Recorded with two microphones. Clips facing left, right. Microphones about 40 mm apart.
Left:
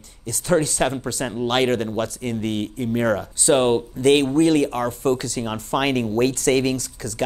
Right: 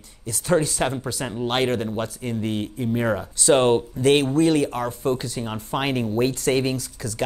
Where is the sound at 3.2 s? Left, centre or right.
Left.